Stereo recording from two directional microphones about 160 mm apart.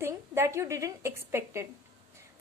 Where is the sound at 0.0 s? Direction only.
15° right (ahead or behind).